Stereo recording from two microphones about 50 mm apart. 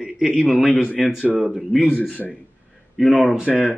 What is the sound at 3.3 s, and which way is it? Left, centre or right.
Speech, centre.